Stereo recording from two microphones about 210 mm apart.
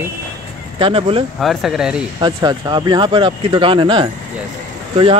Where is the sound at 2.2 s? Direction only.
20° right (ahead or behind).